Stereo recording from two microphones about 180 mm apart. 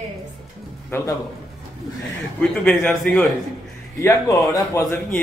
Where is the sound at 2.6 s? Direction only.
5° left (ahead or behind).